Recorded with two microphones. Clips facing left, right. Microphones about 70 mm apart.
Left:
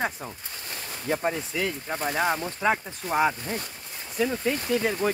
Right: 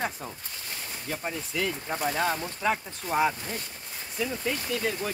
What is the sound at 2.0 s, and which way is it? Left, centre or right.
Speech, centre.